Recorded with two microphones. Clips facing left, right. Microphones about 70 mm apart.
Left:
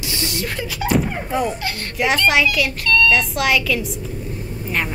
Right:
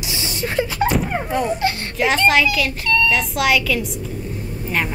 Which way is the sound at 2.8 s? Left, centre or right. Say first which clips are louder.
Left 2 dB; centre.